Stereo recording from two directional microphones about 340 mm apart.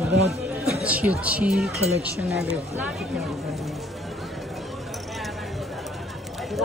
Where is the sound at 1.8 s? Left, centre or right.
Centre.